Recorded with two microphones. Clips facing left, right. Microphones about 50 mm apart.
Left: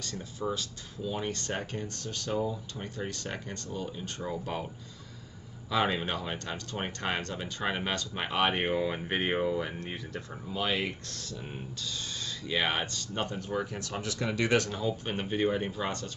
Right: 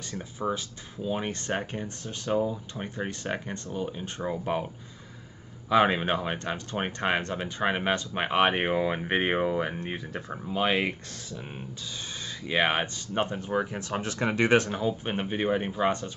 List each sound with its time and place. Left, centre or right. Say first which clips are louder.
0.0 s speech: right 3 dB; right
5.7 s speech: right 6 dB; right
12.4 s speech: right 5 dB; right